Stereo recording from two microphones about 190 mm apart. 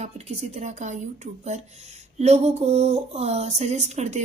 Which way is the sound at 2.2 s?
35° right (ahead or behind).